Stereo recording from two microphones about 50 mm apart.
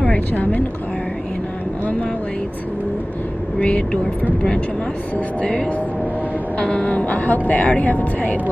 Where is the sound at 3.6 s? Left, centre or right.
Left.